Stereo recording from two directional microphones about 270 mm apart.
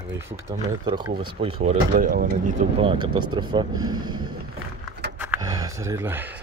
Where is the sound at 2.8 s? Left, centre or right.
Centre.